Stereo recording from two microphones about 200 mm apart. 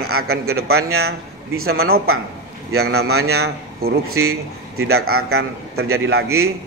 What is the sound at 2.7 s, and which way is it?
A man's voice, 90° right.